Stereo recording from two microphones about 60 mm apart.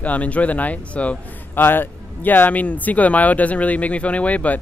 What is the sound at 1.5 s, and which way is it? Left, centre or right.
Speech, left.